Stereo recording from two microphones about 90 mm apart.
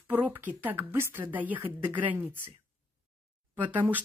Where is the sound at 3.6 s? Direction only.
20° right (ahead or behind).